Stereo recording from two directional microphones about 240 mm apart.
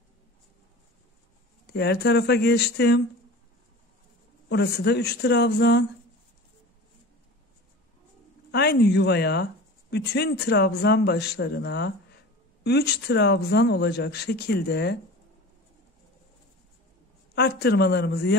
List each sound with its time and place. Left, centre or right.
1.7 s speech: left
4.5 s speech: left
8.5 s speech: left
17.4 s speech: left